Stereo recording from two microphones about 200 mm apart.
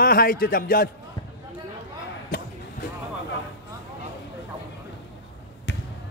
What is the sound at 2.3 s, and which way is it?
Basketball bounce, 45° left (ahead or behind).